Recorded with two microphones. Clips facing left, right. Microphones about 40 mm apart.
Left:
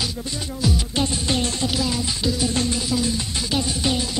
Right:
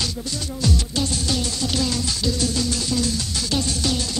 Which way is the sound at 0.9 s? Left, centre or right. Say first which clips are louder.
Left 1 dB; left.